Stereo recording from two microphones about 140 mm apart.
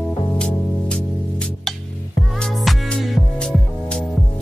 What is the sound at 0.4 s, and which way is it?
Music, 5° left (ahead or behind).